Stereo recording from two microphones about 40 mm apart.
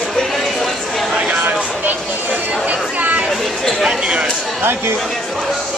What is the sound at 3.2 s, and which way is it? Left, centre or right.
Speech, centre.